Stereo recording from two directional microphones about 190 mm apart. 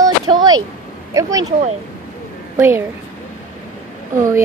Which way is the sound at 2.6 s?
10° right (ahead or behind).